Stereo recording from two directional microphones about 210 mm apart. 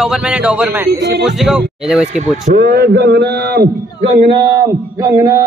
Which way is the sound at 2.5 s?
45° right (ahead or behind).